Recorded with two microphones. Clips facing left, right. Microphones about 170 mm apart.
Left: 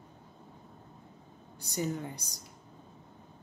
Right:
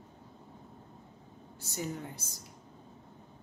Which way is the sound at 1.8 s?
5° right (ahead or behind).